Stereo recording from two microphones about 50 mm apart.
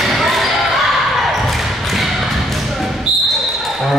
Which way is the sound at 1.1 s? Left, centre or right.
Centre.